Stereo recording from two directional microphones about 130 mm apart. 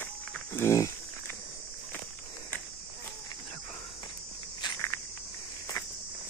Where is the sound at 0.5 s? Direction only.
20° left (ahead or behind).